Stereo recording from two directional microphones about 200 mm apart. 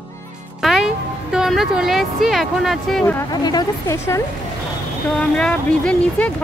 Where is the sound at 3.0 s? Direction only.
15° left (ahead or behind).